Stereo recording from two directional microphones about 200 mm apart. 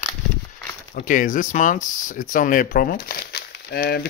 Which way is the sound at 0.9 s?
40° left (ahead or behind).